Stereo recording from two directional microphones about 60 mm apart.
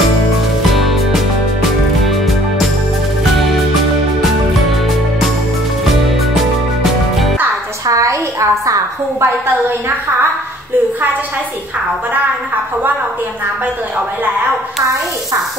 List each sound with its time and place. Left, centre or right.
0.7 s music: centre
7.8 s a sound: right
9.2 s a woman's voice: right